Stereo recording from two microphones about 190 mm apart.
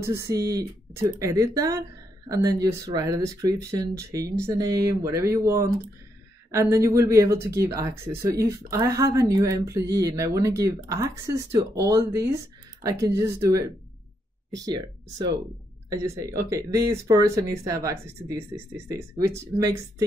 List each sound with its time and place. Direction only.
0.0 s speech: 15° right (ahead or behind)
14.7 s speech: 20° right (ahead or behind)